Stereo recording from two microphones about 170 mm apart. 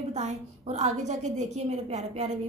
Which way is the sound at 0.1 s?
40° right (ahead or behind).